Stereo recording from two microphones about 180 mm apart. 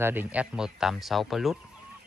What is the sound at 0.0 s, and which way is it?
Speech, 10° right (ahead or behind).